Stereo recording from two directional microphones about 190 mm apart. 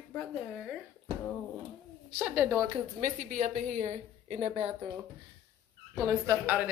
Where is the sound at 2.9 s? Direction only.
40° right (ahead or behind).